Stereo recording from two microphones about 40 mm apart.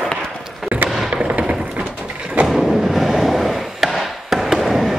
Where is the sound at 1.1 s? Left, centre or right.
Right.